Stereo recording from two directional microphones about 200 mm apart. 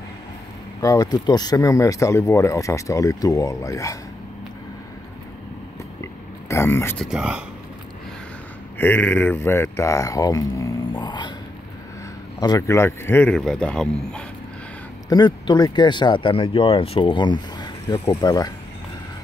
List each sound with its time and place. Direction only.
0.7 s speech: 15° left (ahead or behind)
6.5 s speech: 10° left (ahead or behind)
7.1 s speech: 5° right (ahead or behind)
8.7 s speech: 10° left (ahead or behind)
12.4 s speech: 20° left (ahead or behind)
15.0 s speech: 20° left (ahead or behind)